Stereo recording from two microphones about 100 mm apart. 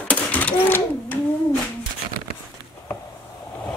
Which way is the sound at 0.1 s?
15° left (ahead or behind).